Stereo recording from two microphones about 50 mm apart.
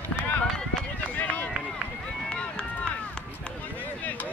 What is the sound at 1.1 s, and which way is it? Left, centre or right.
Run, left.